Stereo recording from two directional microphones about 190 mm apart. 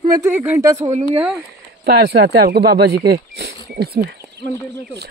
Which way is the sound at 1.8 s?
55° right (ahead or behind).